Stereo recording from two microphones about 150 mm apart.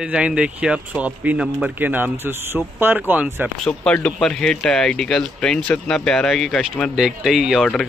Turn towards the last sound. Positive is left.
turn(degrees=0)  # may be behind; listen again after turning